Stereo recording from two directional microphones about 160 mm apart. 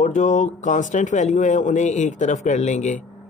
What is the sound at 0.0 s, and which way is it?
Speech, 50° left (ahead or behind).